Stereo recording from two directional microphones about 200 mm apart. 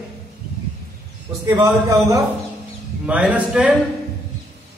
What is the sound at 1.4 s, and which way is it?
A man's voice, 15° right (ahead or behind).